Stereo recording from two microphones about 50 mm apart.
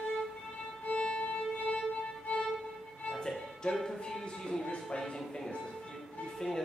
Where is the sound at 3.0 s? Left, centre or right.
Centre.